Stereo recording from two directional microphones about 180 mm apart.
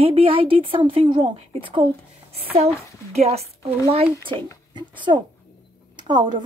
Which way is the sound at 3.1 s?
35° right (ahead or behind).